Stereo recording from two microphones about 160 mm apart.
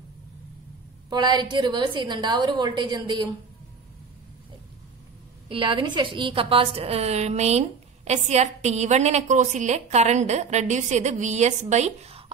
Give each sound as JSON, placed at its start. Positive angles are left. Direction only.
{"t": 1.1, "sound": "a woman's voice", "side_deg": -30}
{"t": 5.5, "sound": "a woman's voice", "side_deg": -35}